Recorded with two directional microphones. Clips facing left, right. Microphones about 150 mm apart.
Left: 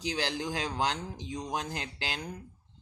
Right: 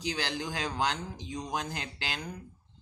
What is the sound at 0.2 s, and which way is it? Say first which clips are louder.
Speech: left 1 dB; 30° left (ahead or behind).